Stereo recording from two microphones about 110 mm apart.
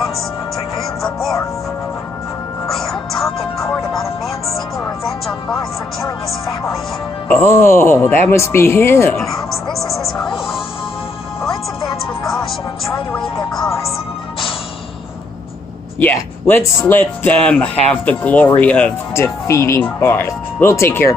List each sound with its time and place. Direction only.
2.7 s music: centre (ahead or behind)
5.0 s speech: centre (ahead or behind)
7.2 s speech: 20° left (ahead or behind)
9.1 s music: centre (ahead or behind)
13.1 s music: centre (ahead or behind)
16.0 s speech: 20° left (ahead or behind)
19.1 s speech: 25° left (ahead or behind)